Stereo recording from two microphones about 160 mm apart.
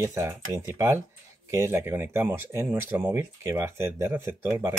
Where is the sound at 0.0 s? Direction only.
20° right (ahead or behind).